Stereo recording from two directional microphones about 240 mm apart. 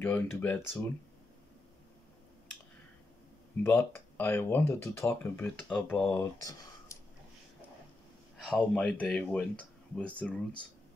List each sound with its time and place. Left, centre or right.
0.0 s speech: centre
3.6 s speech: centre
8.5 s speech: centre